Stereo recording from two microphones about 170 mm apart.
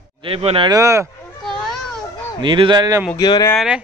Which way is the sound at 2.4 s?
30° right (ahead or behind).